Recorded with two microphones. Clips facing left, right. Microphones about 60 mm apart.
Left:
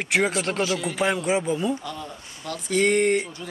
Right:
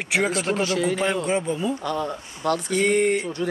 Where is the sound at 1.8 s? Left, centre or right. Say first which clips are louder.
Right 8 dB; right.